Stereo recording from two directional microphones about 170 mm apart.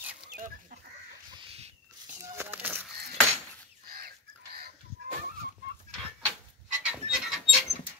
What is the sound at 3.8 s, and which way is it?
Chicken, 65° right (ahead or behind).